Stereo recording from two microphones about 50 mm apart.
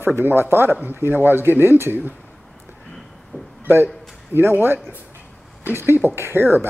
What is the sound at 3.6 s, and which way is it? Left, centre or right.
A man's voice, right.